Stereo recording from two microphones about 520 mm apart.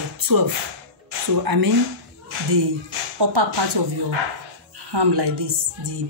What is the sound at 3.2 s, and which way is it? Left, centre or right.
Speech, right.